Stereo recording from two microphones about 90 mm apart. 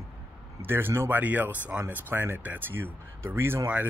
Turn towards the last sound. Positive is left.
turn(degrees=-25)  # may be behind; listen again after turning